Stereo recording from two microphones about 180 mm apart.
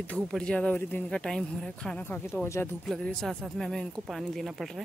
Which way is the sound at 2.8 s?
5° left (ahead or behind).